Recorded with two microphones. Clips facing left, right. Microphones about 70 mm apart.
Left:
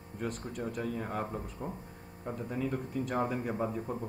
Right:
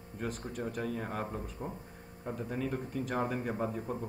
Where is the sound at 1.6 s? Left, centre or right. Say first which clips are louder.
Left 1 dB; left.